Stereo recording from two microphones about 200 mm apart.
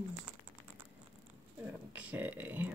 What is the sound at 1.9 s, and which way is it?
Speech, 5° right (ahead or behind).